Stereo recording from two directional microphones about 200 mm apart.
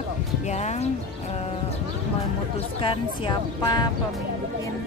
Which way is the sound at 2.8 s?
25° left (ahead or behind).